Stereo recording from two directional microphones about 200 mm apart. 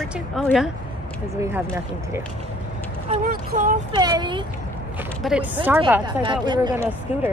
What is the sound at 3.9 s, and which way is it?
Speech, 20° right (ahead or behind).